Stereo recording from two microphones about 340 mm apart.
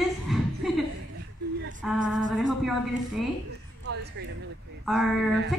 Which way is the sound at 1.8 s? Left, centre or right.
Centre.